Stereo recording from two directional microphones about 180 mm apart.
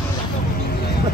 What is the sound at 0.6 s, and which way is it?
Vehicle, 60° left (ahead or behind).